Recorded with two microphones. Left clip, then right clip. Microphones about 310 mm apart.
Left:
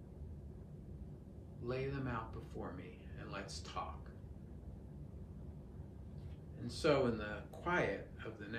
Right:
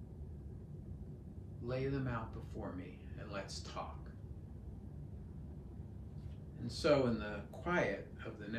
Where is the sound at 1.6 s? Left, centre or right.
Centre.